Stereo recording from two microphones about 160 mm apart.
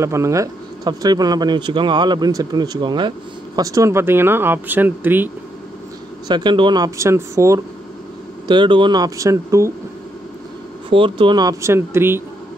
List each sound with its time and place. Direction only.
0.0 s speech: 20° right (ahead or behind)
6.2 s speech: 30° right (ahead or behind)
8.5 s speech: 30° right (ahead or behind)
10.9 s speech: 30° right (ahead or behind); by 12.2 s 15° right (ahead or behind)